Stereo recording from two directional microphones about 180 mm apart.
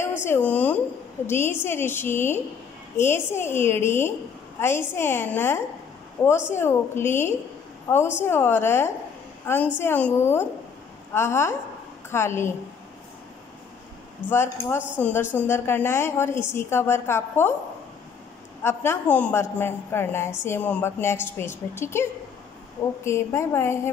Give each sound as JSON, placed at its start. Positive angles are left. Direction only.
{"t": 0.2, "sound": "a woman's voice", "side_deg": 10}
{"t": 6.2, "sound": "a woman's voice", "side_deg": 25}
{"t": 6.5, "sound": "a woman's voice", "side_deg": 15}
{"t": 14.3, "sound": "a woman's voice", "side_deg": 15}
{"t": 18.6, "sound": "a woman's voice", "side_deg": 15}
{"t": 23.0, "sound": "a woman's voice", "side_deg": 15}